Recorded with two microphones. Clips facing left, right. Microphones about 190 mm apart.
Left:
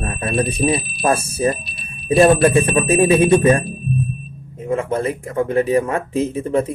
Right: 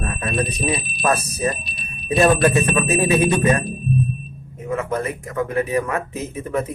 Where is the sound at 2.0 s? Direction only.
30° left (ahead or behind).